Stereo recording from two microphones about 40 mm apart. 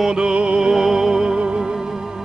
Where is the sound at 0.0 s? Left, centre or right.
Right.